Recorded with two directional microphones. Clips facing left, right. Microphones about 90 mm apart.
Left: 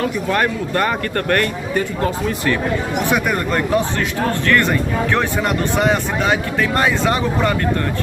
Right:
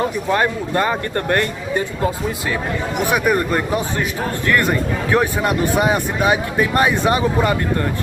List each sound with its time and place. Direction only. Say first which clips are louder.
0.0 s speech: even; 20° right (ahead or behind)